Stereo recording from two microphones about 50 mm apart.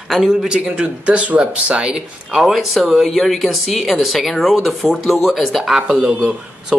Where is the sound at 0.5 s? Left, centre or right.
Centre.